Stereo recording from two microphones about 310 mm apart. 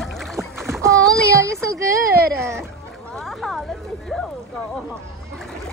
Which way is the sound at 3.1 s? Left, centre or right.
Centre.